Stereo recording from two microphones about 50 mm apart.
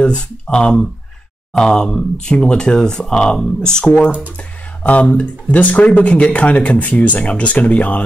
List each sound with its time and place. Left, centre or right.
0.0 s speech: left
5.0 s speech: left